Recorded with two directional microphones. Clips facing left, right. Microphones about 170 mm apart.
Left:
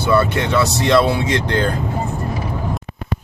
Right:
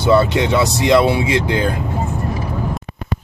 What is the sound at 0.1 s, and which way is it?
Speech, 20° right (ahead or behind).